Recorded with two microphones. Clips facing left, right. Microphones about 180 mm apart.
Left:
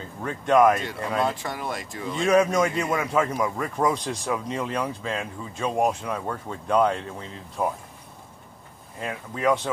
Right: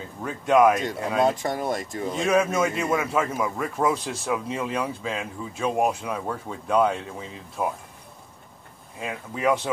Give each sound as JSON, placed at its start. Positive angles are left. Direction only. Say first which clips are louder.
{"t": 0.2, "sound": "a man's voice", "louder": "even", "side_deg": -5}
{"t": 1.2, "sound": "speech", "louder": "right 4 dB", "side_deg": -45}
{"t": 2.2, "sound": "a man's voice", "louder": "left 2 dB", "side_deg": -5}
{"t": 9.0, "sound": "speech", "louder": "even", "side_deg": -5}